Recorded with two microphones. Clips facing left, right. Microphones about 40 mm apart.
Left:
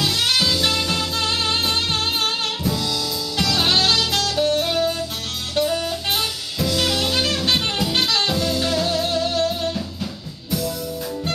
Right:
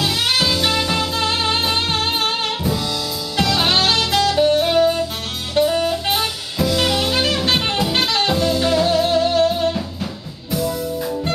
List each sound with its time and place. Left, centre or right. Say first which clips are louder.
0.0 s music: right 1 dB; centre
3.3 s saxophone: right 2 dB; centre